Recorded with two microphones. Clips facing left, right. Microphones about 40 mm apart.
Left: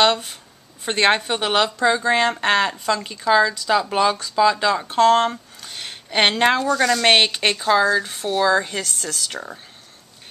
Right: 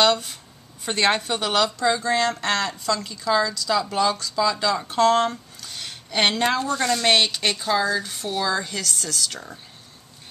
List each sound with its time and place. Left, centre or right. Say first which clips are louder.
0.0 s a woman's voice: left 2 dB; centre
4.8 s a woman's voice: left 3 dB; centre
8.5 s a woman's voice: left 6 dB; left